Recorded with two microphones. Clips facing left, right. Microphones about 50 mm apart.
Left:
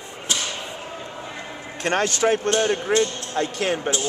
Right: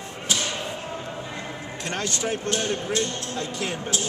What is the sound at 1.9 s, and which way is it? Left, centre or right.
Speech, left.